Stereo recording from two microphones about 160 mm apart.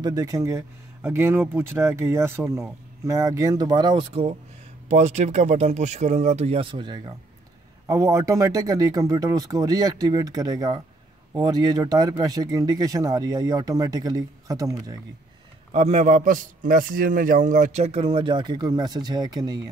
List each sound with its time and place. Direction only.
0.0 s speech: 25° right (ahead or behind)
15.7 s a man's voice: 45° right (ahead or behind); by 19.7 s 25° right (ahead or behind)